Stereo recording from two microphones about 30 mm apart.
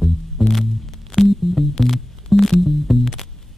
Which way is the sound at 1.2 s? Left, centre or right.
Right.